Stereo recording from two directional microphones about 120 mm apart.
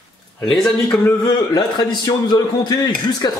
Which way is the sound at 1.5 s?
35° left (ahead or behind).